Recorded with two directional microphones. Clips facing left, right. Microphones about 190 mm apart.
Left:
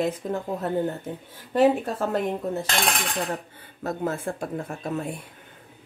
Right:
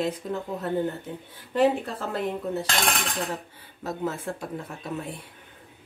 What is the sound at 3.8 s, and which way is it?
Speech, 50° left (ahead or behind).